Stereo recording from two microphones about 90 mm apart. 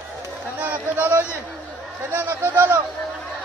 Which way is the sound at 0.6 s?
20° right (ahead or behind).